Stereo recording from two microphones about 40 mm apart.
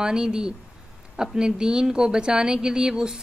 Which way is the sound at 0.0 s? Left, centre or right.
Centre.